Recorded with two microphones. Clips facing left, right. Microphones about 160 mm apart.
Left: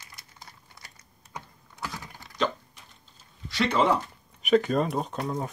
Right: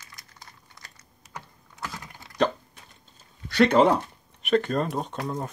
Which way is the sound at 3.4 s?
60° right (ahead or behind).